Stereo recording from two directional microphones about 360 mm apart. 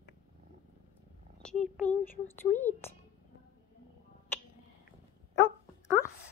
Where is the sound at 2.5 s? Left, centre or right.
Centre.